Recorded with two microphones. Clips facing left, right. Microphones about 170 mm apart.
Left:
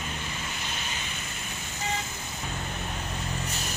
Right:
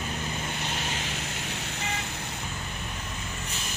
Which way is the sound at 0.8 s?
80° right.